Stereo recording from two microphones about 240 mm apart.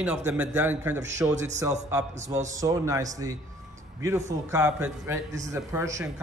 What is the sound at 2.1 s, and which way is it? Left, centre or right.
Speech, right.